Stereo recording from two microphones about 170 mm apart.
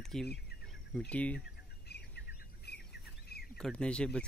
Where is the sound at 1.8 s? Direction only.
75° left (ahead or behind).